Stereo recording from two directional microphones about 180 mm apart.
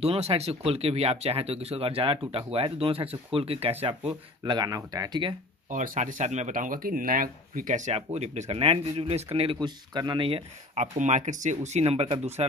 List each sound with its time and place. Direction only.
0.0 s speech: 35° right (ahead or behind)
4.5 s speech: 20° right (ahead or behind)
5.7 s speech: 45° right (ahead or behind)